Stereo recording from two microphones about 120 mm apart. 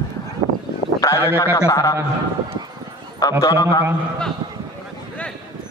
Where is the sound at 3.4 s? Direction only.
30° left (ahead or behind).